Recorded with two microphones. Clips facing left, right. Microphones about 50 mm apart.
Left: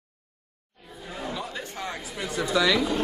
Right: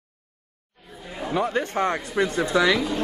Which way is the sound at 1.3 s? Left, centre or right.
Right.